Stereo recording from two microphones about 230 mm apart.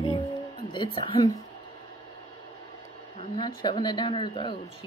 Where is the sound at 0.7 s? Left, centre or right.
Left.